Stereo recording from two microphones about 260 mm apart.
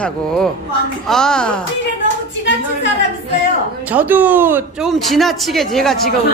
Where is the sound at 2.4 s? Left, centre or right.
Left.